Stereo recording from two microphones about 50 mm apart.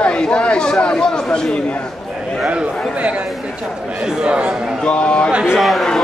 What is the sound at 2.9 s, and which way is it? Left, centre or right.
A man's voice, right.